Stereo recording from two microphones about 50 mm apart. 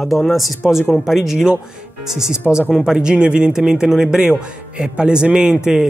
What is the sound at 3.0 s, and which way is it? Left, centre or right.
Speech, centre.